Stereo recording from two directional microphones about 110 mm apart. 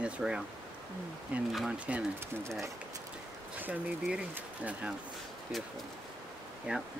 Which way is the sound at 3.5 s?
15° right (ahead or behind).